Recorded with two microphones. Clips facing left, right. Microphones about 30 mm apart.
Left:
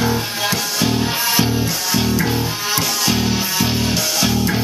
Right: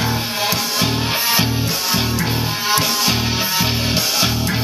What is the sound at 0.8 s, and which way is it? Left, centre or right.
Music, right.